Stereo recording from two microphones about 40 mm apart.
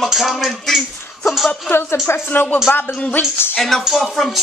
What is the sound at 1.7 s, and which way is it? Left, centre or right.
A woman's voice, left.